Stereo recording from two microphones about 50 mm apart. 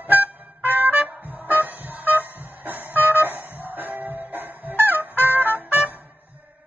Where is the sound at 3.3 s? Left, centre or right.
Right.